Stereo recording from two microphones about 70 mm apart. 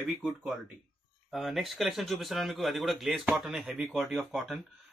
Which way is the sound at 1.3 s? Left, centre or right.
Centre.